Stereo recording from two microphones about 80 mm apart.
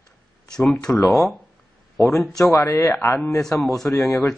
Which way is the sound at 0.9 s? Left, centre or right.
Left.